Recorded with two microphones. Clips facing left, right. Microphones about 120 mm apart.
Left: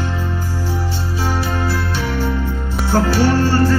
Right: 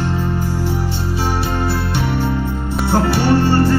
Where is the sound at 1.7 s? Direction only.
20° right (ahead or behind).